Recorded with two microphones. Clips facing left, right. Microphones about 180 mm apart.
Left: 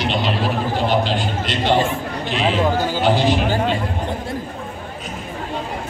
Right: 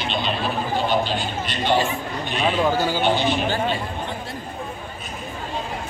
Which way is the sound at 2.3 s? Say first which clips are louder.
Left 2 dB; 90° left.